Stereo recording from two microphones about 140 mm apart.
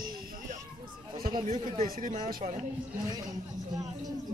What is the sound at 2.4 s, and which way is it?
Speech, 65° right (ahead or behind).